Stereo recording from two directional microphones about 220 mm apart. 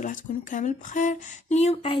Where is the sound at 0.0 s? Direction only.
35° left (ahead or behind).